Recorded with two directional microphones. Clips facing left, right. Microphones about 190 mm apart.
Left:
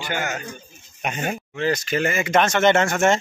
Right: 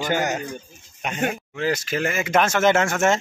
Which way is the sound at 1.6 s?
5° right (ahead or behind).